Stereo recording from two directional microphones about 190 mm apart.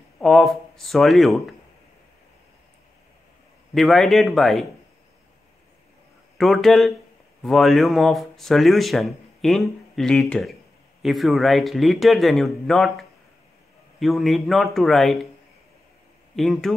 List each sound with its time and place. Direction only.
0.2 s speech: centre (ahead or behind)
3.7 s speech: centre (ahead or behind)
6.3 s speech: centre (ahead or behind)
16.3 s speech: centre (ahead or behind)